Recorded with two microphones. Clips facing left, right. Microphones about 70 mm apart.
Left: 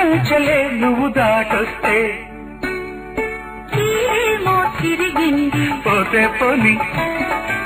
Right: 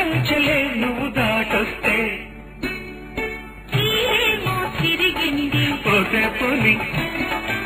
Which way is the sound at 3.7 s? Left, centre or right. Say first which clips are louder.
Left 5 dB; left.